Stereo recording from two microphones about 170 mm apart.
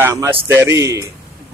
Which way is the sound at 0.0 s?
15° right (ahead or behind).